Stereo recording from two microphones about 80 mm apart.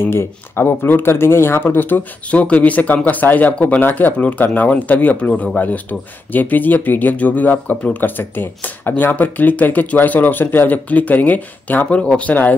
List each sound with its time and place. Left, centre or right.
0.0 s speech: left; by 5.6 s centre
5.6 s speech: left